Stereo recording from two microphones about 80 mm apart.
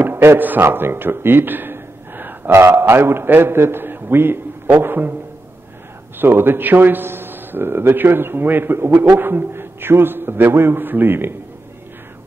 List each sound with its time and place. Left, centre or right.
0.0 s speech: right
6.1 s a man's voice: right